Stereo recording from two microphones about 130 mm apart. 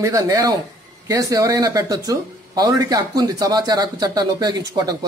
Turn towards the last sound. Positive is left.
turn(degrees=-30)  # may be behind; listen again after turning